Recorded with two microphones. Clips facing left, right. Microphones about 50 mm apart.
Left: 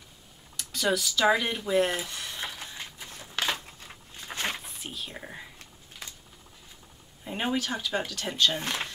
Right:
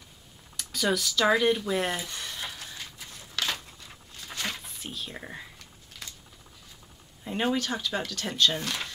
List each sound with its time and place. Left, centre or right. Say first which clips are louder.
0.6 s speech: even; centre
2.4 s a sound: left 1 dB; left
4.6 s speech: even; centre
6.0 s a sound: even; centre
7.2 s speech: right 2 dB; centre
8.5 s speech: left 1 dB; left